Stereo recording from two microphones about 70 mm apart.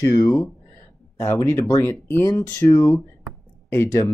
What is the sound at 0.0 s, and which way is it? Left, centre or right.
Speech, left.